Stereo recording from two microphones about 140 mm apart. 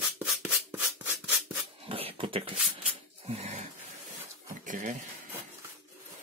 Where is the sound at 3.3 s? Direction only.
50° right (ahead or behind).